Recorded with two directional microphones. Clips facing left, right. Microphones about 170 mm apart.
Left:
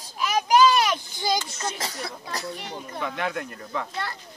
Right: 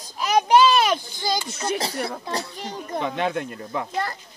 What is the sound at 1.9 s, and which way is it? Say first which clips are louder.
Speech: right 7 dB; 65° right (ahead or behind).